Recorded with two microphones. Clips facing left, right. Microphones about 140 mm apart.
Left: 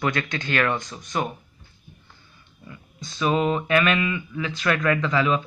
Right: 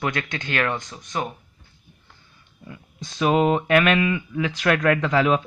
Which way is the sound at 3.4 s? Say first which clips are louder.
Right 4 dB; 55° right (ahead or behind).